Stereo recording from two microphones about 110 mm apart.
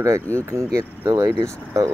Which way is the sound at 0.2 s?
15° left (ahead or behind).